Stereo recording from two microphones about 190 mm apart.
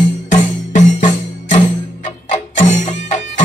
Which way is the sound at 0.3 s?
40° left (ahead or behind).